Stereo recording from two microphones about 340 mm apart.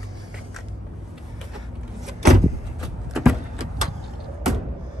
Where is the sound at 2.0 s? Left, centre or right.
Centre.